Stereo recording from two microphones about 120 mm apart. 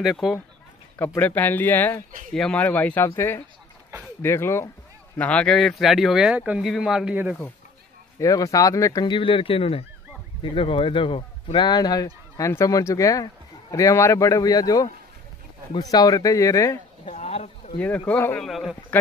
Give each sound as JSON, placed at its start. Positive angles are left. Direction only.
{"t": 0.0, "sound": "speech", "side_deg": 0}
{"t": 0.9, "sound": "speech", "side_deg": 15}
{"t": 8.2, "sound": "speech", "side_deg": 30}
{"t": 9.0, "sound": "speech", "side_deg": 45}
{"t": 17.1, "sound": "a sound", "side_deg": 70}
{"t": 17.7, "sound": "speech", "side_deg": 15}
{"t": 18.4, "sound": "speech", "side_deg": 0}